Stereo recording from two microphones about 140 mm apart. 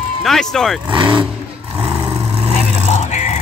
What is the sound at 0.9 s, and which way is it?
Speech, 35° right (ahead or behind).